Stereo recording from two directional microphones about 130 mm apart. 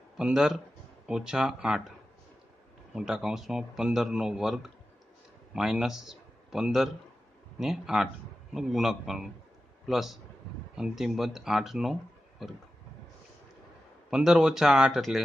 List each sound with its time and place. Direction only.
0.2 s speech: 5° right (ahead or behind)
2.9 s a man's voice: 5° right (ahead or behind)
14.1 s speech: 5° right (ahead or behind)